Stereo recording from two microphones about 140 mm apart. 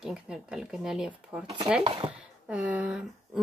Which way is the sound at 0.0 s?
5° right (ahead or behind).